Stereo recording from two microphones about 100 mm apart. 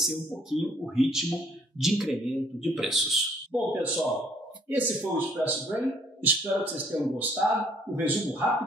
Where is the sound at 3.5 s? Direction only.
15° right (ahead or behind).